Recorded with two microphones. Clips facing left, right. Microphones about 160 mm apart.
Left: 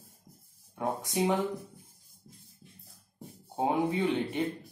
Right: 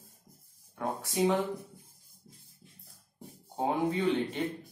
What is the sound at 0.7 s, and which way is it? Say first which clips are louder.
Speech: left 2 dB; 15° left (ahead or behind).